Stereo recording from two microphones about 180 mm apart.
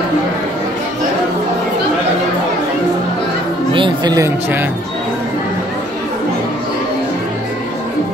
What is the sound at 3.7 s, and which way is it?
Music, 25° right (ahead or behind).